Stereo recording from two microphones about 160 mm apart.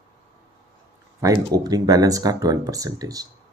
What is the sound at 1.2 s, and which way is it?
Speech, 25° right (ahead or behind).